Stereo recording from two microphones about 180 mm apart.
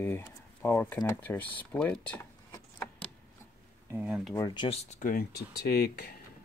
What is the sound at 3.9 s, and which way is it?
Speech, 5° right (ahead or behind).